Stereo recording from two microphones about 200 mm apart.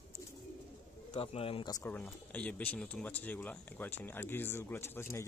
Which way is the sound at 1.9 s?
5° left (ahead or behind).